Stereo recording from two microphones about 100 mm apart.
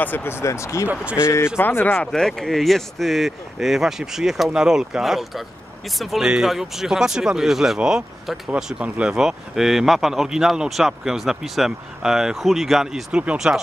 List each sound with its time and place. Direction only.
0.0 s speech: 20° left (ahead or behind)
0.9 s speech: 10° right (ahead or behind)
1.2 s speech: 25° left (ahead or behind)
2.1 s speech: 5° left (ahead or behind)